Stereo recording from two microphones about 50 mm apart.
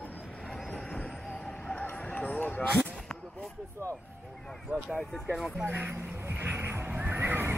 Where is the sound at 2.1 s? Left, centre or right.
Left.